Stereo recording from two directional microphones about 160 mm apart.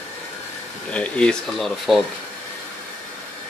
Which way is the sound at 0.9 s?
5° left (ahead or behind).